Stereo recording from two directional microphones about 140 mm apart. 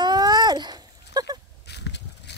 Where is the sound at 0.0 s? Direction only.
30° right (ahead or behind).